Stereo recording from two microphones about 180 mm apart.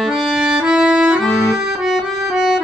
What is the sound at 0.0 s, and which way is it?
Accordion, centre (ahead or behind).